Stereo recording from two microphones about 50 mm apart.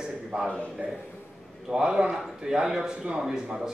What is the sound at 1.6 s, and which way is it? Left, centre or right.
Speech, centre.